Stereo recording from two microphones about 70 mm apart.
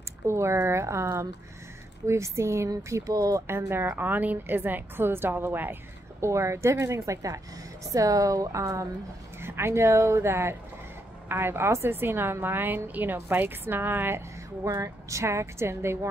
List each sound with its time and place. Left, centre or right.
0.3 s a woman's voice: right
2.0 s a woman's voice: right
2.9 s a woman's voice: right
3.4 s a woman's voice: right
3.9 s a woman's voice: right
6.2 s a woman's voice: right
9.4 s a woman's voice: right